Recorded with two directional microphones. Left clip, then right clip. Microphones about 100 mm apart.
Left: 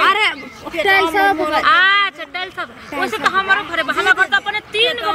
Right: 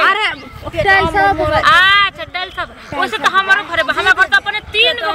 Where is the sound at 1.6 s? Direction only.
20° right (ahead or behind).